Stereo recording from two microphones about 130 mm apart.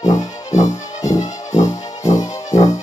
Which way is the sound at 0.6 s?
25° left (ahead or behind).